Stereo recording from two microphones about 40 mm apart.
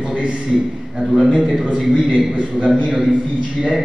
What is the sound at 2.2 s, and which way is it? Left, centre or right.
Speech, right.